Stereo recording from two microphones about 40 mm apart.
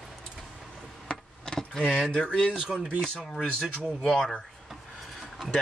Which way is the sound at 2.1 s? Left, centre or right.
Left.